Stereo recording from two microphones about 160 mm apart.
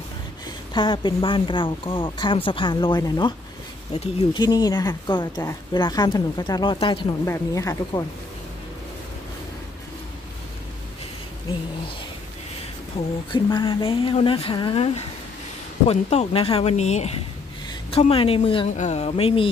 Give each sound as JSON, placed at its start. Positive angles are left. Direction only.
{"t": 0.7, "sound": "speech", "side_deg": 30}
{"t": 3.9, "sound": "speech", "side_deg": 40}
{"t": 4.4, "sound": "a woman's voice", "side_deg": 25}
{"t": 7.2, "sound": "a woman's voice", "side_deg": 20}
{"t": 12.9, "sound": "speech", "side_deg": 30}
{"t": 15.9, "sound": "speech", "side_deg": 40}
{"t": 18.7, "sound": "speech", "side_deg": 45}